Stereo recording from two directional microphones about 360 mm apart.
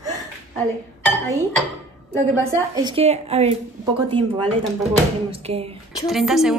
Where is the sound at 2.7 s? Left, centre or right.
Centre.